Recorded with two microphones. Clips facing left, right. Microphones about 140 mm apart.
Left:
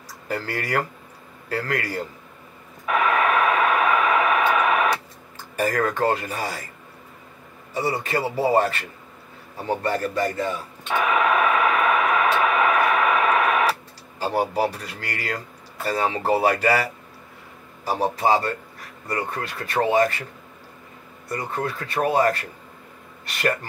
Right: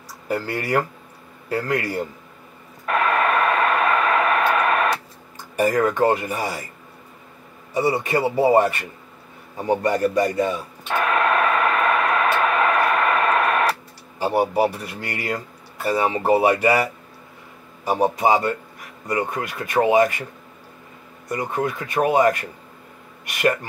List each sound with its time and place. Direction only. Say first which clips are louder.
0.3 s a man's voice: right 4 dB; 10° right (ahead or behind)
2.9 s radio: right 1 dB; 5° left (ahead or behind)
5.6 s a man's voice: right 4 dB; 15° right (ahead or behind)
8.0 s a man's voice: right 4 dB; 15° right (ahead or behind)
10.9 s radio: even; 5° left (ahead or behind)
14.2 s a man's voice: right 3 dB; 10° right (ahead or behind)
17.8 s a man's voice: right 3 dB; 15° right (ahead or behind)
21.3 s a man's voice: right 3 dB; 15° right (ahead or behind)